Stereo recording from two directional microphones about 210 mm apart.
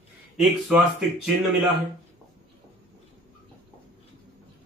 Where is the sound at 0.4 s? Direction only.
5° right (ahead or behind).